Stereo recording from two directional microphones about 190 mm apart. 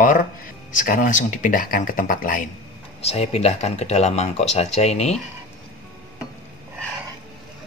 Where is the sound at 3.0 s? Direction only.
35° left (ahead or behind).